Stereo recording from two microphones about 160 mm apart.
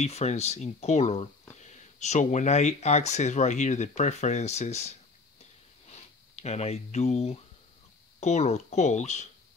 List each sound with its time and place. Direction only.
0.0 s speech: 40° left (ahead or behind)